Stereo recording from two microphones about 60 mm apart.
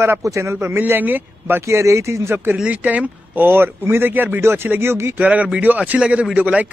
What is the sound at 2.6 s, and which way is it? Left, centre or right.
Speech, right.